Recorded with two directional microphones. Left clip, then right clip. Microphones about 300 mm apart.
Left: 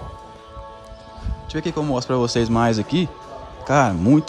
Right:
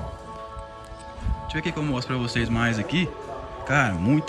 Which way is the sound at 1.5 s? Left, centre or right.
Centre.